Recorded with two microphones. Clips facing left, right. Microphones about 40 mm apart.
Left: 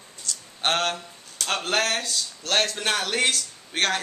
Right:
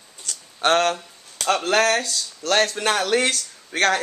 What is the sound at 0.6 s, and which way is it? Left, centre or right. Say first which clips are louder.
Speech: right 6 dB; right.